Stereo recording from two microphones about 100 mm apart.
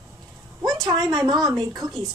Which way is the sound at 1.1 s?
40° right (ahead or behind).